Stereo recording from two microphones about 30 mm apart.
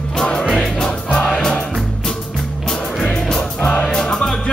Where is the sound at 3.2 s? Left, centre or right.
Left.